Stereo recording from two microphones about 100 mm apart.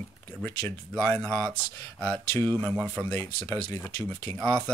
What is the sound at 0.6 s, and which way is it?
Speech, 10° left (ahead or behind).